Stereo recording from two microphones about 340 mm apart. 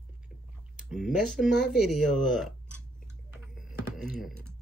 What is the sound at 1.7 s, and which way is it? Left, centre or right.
Chewing, centre.